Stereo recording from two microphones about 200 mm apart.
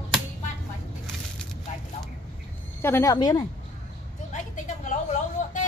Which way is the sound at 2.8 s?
15° left (ahead or behind).